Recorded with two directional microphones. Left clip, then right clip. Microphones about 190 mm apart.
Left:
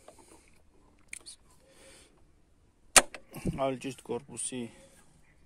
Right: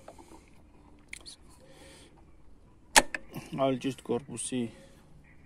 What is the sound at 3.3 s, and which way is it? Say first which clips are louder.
Speech: right 2 dB; 10° left (ahead or behind).